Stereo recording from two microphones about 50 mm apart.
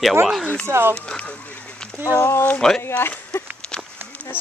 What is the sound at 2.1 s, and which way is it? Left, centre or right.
Speech, left.